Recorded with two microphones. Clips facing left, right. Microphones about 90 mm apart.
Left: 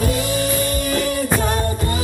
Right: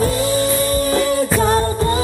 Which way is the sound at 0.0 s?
35° right (ahead or behind).